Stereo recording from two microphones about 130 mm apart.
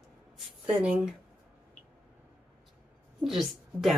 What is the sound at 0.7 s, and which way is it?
Speech, 10° right (ahead or behind).